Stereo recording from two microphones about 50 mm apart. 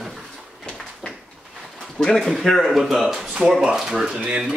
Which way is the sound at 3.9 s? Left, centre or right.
Right.